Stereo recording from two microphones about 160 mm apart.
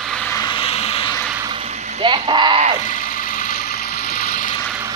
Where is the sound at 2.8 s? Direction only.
60° left (ahead or behind).